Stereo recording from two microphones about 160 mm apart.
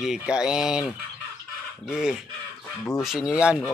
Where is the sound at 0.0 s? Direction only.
5° right (ahead or behind).